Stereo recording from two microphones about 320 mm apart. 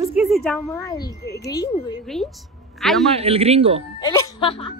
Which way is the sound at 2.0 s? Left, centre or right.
Centre.